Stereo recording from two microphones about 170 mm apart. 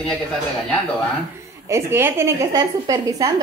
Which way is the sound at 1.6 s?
15° right (ahead or behind).